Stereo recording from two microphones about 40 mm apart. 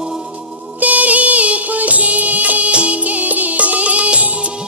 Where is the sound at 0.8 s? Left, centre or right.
Right.